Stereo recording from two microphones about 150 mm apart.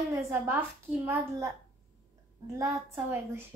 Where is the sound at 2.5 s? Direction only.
20° right (ahead or behind).